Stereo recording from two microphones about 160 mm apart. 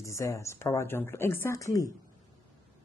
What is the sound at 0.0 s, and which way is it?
A woman's voice, 20° left (ahead or behind).